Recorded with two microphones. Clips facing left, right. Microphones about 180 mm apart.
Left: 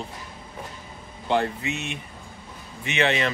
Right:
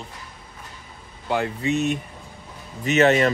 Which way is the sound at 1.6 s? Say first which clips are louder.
Right 9 dB; 40° right (ahead or behind).